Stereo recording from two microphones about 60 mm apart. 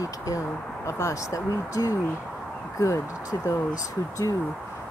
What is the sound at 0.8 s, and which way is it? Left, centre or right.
Speech, left.